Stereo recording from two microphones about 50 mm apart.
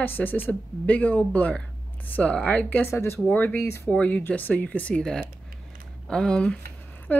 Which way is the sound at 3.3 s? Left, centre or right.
Left.